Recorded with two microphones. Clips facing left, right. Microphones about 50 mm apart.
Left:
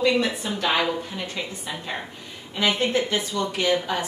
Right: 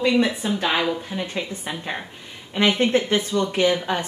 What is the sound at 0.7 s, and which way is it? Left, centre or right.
Speech, centre.